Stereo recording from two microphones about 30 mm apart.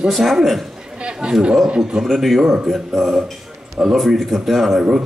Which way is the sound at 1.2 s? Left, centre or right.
Right.